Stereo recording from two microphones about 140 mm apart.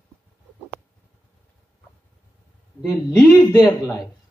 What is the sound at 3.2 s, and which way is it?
Speech, 20° left (ahead or behind).